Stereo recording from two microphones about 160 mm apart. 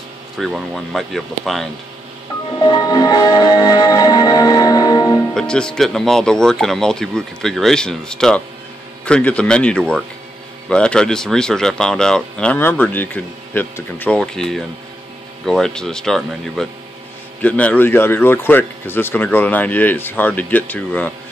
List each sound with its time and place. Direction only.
0.4 s speech: centre (ahead or behind)
2.6 s music: 25° left (ahead or behind)
5.3 s speech: 5° left (ahead or behind)